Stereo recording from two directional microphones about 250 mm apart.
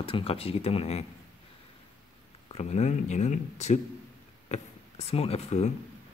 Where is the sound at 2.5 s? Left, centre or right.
Left.